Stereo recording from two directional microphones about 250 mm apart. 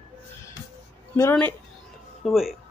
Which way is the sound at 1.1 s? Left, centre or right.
Centre.